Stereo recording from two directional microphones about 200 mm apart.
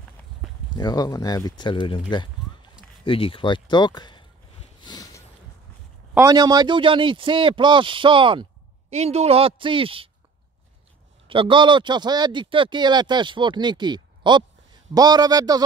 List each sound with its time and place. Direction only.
0.7 s speech: 20° left (ahead or behind)
4.8 s a sound: 20° left (ahead or behind)
6.1 s speech: 20° right (ahead or behind)
11.2 s speech: 25° right (ahead or behind)